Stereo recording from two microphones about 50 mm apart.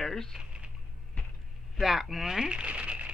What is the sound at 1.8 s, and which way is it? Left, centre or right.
Speech, centre.